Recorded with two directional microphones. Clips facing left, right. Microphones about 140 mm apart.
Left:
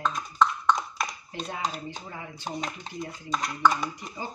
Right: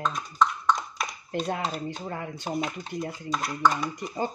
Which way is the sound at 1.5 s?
55° right (ahead or behind).